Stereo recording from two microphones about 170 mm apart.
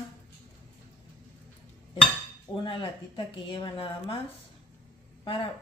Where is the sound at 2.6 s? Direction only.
30° left (ahead or behind).